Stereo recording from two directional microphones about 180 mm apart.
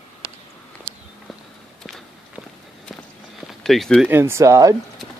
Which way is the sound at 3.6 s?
Centre (ahead or behind).